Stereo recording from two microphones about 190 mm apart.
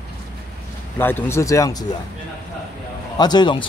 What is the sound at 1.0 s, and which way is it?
Speech, 10° left (ahead or behind).